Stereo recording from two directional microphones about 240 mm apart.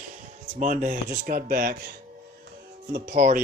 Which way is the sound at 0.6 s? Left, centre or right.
Right.